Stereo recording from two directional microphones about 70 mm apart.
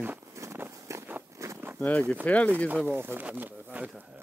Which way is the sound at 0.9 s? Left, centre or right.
Right.